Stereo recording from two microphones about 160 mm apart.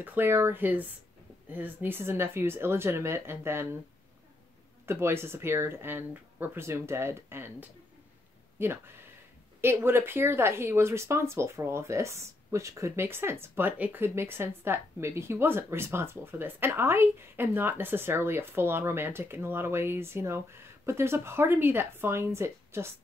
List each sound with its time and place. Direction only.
0.0 s speech: 15° right (ahead or behind)
4.8 s speech: 15° right (ahead or behind)